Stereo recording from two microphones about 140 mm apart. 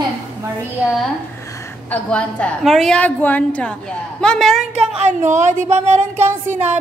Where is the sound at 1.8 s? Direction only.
5° left (ahead or behind).